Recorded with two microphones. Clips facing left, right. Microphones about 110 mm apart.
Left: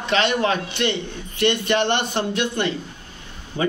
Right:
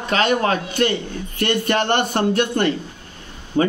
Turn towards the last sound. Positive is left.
turn(degrees=-50)  # may be behind; listen again after turning